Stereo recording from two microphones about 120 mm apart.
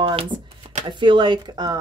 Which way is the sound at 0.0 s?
50° right (ahead or behind).